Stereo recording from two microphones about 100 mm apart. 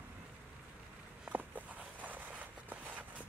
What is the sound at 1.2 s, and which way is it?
Walk, 15° right (ahead or behind).